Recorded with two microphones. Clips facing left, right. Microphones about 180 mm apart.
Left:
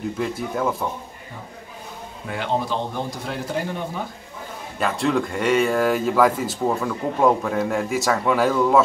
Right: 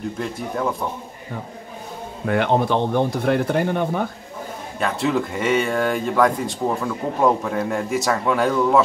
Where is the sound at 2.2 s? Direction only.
60° right (ahead or behind).